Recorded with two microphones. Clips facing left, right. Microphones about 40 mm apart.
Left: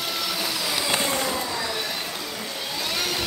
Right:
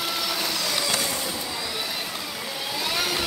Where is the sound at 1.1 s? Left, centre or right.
Left.